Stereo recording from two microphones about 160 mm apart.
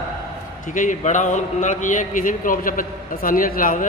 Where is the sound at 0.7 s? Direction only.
50° left (ahead or behind).